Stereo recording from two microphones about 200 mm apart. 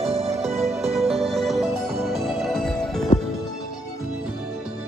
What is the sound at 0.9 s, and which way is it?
Music, centre (ahead or behind).